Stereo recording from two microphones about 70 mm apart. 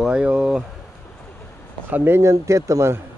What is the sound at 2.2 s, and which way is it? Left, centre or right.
Speech, right.